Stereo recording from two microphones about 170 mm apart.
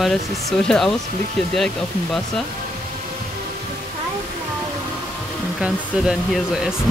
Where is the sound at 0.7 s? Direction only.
5° left (ahead or behind).